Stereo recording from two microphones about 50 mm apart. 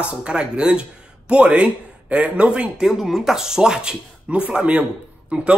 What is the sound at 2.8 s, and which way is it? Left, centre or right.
Speech, centre.